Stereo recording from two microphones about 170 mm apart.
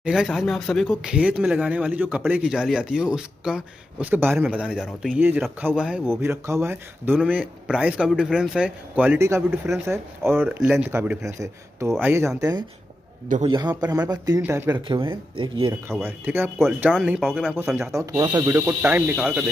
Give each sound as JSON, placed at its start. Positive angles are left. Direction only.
{"t": 0.0, "sound": "speech", "side_deg": -5}
{"t": 14.9, "sound": "speech", "side_deg": -30}
{"t": 15.9, "sound": "speech", "side_deg": -15}
{"t": 16.9, "sound": "speech", "side_deg": 0}
{"t": 17.9, "sound": "speech", "side_deg": -15}